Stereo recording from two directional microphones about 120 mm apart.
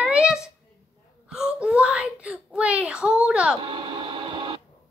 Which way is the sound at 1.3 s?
10° right (ahead or behind).